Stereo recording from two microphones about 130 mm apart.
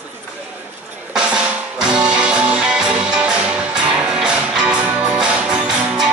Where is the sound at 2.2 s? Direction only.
10° right (ahead or behind).